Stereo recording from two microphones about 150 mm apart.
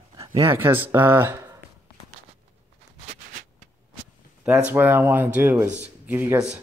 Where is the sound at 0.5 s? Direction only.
10° right (ahead or behind).